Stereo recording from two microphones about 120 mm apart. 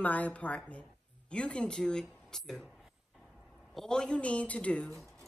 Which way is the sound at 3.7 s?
5° left (ahead or behind).